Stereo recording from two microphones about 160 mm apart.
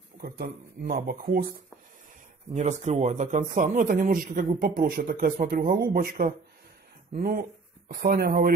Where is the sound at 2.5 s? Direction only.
50° right (ahead or behind).